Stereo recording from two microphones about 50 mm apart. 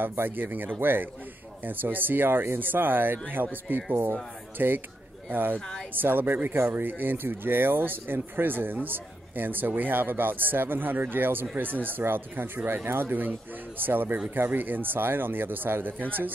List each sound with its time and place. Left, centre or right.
0.0 s speech: right